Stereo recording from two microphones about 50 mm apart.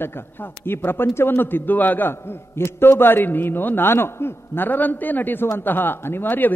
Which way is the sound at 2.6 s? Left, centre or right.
Left.